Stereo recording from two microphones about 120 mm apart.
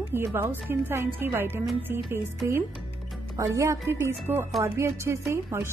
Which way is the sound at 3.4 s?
25° right (ahead or behind).